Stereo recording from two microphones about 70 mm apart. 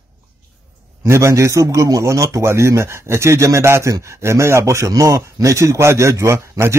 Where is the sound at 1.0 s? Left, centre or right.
Right.